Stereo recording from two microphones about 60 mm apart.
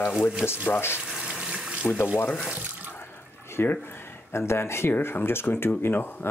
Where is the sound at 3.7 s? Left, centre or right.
Left.